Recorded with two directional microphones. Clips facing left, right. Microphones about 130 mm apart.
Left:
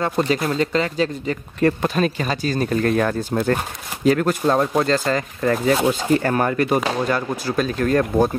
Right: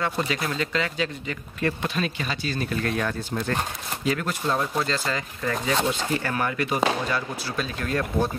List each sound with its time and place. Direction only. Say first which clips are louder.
0.0 s speech: left 6 dB; 40° left (ahead or behind)